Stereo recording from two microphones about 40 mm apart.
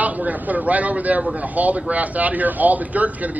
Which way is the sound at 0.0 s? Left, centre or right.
Right.